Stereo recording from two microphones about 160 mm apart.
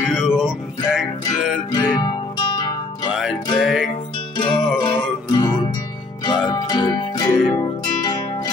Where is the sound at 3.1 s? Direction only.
5° right (ahead or behind).